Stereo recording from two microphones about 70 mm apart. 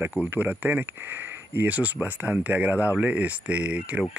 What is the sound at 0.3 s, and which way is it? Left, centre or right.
Speech, right.